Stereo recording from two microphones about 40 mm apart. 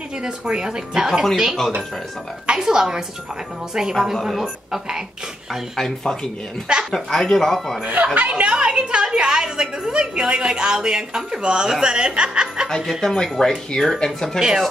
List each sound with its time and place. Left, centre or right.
0.5 s a woman's voice: centre
2.4 s speech: centre
3.9 s a woman's voice: centre
5.8 s speech: centre
7.9 s speech: right
9.0 s a woman's voice: centre
12.6 s speech: centre